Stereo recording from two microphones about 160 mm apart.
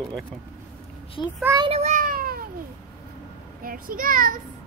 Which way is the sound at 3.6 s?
65° right (ahead or behind).